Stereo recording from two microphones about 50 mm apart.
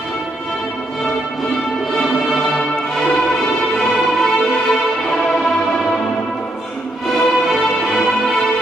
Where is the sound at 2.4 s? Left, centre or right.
Left.